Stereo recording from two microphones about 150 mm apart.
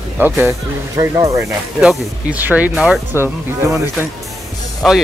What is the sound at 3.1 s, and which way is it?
Speech, 15° right (ahead or behind).